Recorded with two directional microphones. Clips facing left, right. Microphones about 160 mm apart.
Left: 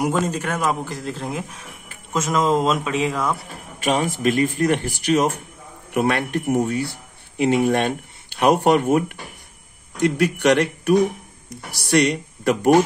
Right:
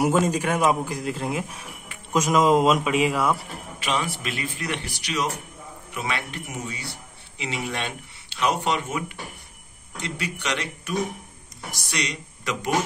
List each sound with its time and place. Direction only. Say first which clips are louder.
0.0 s a man's voice: right 1 dB; 10° right (ahead or behind)
3.8 s speech: left 8 dB; 45° left (ahead or behind)